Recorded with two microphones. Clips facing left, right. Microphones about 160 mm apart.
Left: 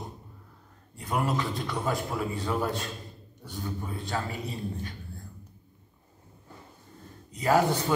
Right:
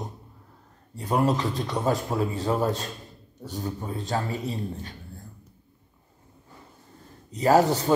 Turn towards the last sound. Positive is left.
turn(degrees=-40)  # may be behind; listen again after turning